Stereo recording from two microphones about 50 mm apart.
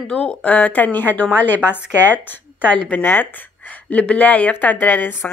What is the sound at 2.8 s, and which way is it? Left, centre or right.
Speech, left.